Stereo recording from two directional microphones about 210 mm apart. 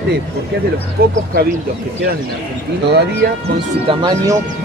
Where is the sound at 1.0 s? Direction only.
45° right (ahead or behind).